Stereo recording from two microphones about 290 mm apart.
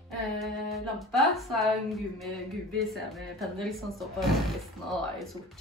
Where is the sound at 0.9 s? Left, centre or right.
Centre.